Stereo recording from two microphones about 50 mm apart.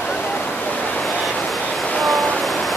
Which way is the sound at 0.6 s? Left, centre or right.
Left.